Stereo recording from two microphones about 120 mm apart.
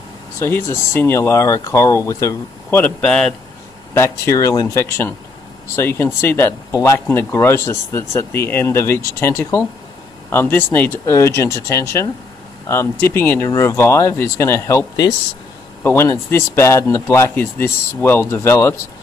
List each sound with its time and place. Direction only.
0.4 s speech: 20° left (ahead or behind)
2.8 s a man's voice: 5° left (ahead or behind)
3.9 s speech: 25° left (ahead or behind)